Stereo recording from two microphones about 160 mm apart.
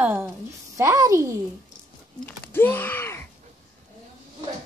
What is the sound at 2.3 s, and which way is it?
Speech, 10° left (ahead or behind).